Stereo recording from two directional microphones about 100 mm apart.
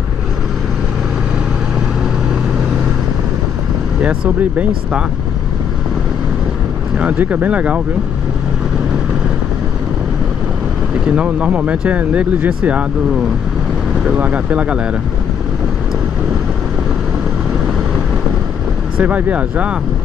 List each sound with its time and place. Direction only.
4.0 s speech: 15° right (ahead or behind)
7.0 s speech: 15° right (ahead or behind)
11.1 s speech: 10° right (ahead or behind)
14.0 s speech: 15° right (ahead or behind)
18.9 s speech: 15° right (ahead or behind)